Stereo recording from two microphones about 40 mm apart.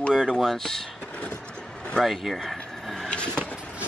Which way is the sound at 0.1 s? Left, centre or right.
Centre.